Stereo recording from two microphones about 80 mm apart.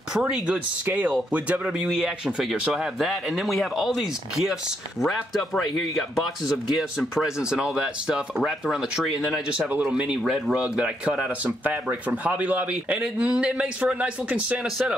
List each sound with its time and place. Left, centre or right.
0.1 s speech: centre
9.7 s speech: right
10.0 s speech: centre